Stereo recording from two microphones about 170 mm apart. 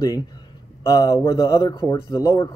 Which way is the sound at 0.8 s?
20° left (ahead or behind).